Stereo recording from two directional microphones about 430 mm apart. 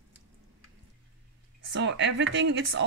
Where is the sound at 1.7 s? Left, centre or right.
Right.